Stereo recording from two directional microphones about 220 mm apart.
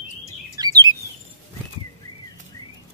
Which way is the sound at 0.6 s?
15° right (ahead or behind).